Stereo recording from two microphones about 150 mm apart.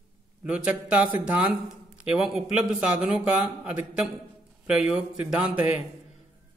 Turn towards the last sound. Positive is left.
turn(degrees=-10)  # may be behind; listen again after turning